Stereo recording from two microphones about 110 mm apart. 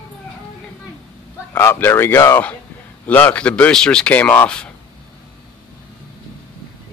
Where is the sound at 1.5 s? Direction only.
20° left (ahead or behind).